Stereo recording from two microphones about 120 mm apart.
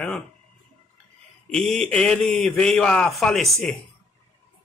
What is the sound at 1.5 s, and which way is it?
A man's voice, 5° left (ahead or behind).